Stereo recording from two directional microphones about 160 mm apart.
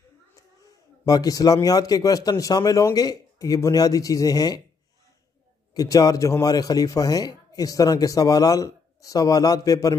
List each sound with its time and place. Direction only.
0.7 s a man's voice: 20° left (ahead or behind)
5.8 s a man's voice: 20° left (ahead or behind)